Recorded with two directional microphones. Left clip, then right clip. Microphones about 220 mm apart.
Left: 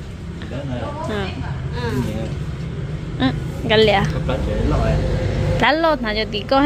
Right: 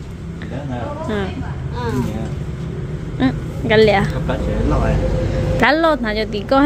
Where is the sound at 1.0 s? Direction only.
15° right (ahead or behind).